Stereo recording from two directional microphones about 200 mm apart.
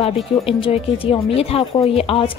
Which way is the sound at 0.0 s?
30° left (ahead or behind).